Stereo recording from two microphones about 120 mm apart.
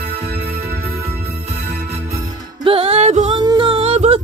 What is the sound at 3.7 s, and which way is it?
Music, 60° right (ahead or behind).